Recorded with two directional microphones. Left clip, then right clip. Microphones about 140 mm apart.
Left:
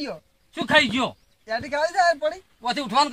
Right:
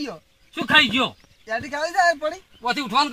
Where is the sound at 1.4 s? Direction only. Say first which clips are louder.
Left 1 dB; 40° left (ahead or behind).